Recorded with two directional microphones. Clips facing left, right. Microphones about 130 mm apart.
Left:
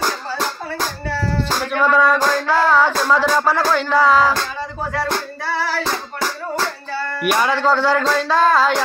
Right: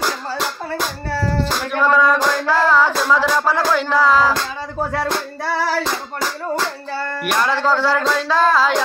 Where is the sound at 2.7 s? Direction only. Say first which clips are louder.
Even; 5° right (ahead or behind).